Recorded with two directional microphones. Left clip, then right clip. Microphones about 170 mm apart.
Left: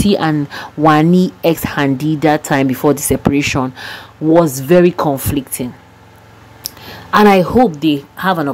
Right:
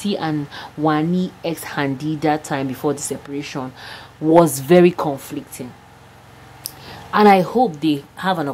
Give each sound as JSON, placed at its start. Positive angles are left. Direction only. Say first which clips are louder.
{"t": 0.0, "sound": "speech", "louder": "left 8 dB", "side_deg": 20}
{"t": 4.3, "sound": "speech", "louder": "left 2 dB", "side_deg": -5}
{"t": 4.9, "sound": "speech", "louder": "left 7 dB", "side_deg": 10}
{"t": 5.3, "sound": "speech", "louder": "left 10 dB", "side_deg": 25}
{"t": 6.6, "sound": "a woman's voice", "louder": "left 6 dB", "side_deg": 15}